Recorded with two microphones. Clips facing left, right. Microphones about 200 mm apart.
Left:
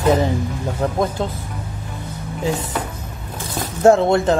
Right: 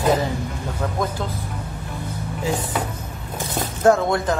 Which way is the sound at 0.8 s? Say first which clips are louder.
Left 5 dB; 25° left (ahead or behind).